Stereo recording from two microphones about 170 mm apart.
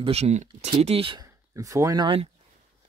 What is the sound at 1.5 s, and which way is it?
Speech, 20° right (ahead or behind).